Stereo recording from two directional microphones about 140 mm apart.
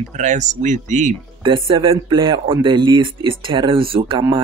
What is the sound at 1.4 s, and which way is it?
Speech, 35° right (ahead or behind).